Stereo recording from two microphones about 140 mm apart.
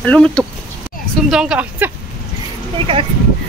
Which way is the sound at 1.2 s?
5° right (ahead or behind).